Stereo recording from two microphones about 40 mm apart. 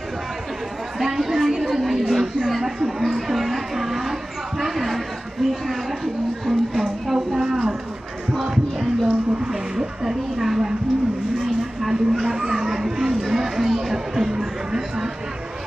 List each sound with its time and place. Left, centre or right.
0.9 s a sound: centre
12.3 s children playing: centre
13.2 s chatter: centre